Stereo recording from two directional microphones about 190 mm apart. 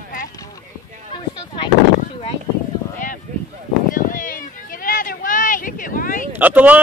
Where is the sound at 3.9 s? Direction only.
45° left (ahead or behind).